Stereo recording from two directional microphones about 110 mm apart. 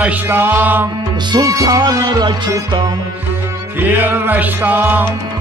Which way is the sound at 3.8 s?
20° right (ahead or behind).